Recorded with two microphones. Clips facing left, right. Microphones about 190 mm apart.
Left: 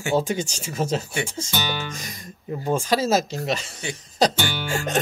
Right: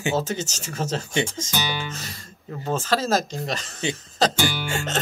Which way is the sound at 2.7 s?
10° left (ahead or behind).